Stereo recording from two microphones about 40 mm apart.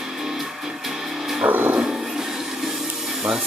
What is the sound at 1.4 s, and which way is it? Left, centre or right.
Dog, right.